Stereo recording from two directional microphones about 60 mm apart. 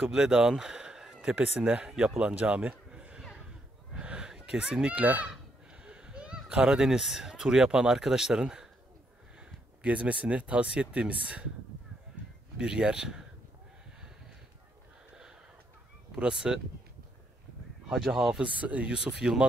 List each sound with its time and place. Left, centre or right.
0.1 s speech: centre
1.4 s a man's voice: right
3.9 s a sound: centre
4.3 s speech: centre
5.9 s a sound: centre
6.5 s speech: centre
9.8 s speech: right
12.5 s speech: centre
16.2 s speech: centre
17.8 s speech: centre
18.4 s speech: right